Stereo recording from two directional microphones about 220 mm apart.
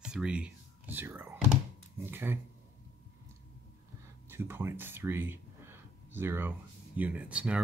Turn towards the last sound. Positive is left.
turn(degrees=-5)  # may be behind; listen again after turning